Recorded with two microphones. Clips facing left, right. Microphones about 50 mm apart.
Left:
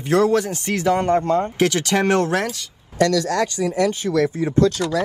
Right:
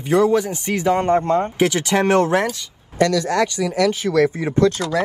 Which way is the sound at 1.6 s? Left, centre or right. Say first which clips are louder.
Right 1 dB; centre.